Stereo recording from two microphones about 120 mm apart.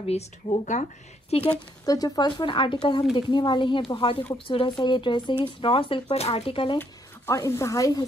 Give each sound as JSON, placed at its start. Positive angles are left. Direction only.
{"t": 0.0, "sound": "speech", "side_deg": 55}
{"t": 1.9, "sound": "speech", "side_deg": 30}
{"t": 6.0, "sound": "speech", "side_deg": 60}
{"t": 6.8, "sound": "speech", "side_deg": 25}